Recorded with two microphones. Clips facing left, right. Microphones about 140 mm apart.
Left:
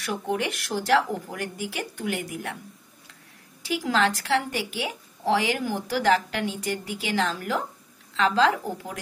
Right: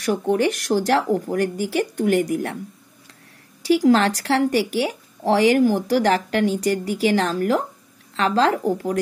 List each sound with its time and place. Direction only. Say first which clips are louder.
0.0 s speech: right 8 dB; 40° right (ahead or behind)
3.6 s speech: right 8 dB; 40° right (ahead or behind)